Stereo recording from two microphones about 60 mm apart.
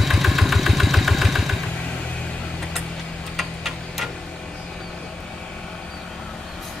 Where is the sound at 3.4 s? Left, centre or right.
Centre.